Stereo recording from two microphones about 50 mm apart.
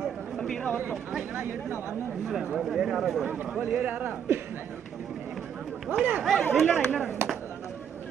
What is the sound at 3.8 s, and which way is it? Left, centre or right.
Speech, right.